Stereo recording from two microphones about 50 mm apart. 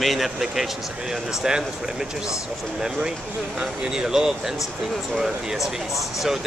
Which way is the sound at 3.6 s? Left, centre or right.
Centre.